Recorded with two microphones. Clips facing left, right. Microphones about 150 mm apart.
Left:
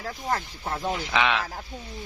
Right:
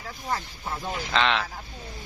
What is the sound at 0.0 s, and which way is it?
Speech, 45° left (ahead or behind).